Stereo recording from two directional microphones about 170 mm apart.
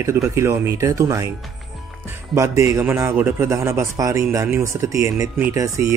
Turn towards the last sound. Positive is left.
turn(degrees=-15)  # may be behind; listen again after turning